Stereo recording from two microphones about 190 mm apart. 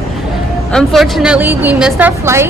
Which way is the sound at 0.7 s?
Centre (ahead or behind).